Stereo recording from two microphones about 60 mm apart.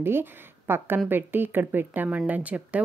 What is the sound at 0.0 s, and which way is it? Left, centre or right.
A woman's voice, right.